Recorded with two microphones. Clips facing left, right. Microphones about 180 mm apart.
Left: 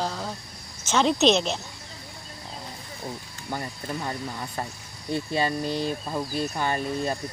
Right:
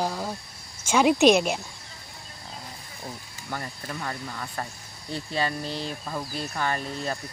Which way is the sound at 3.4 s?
20° left (ahead or behind).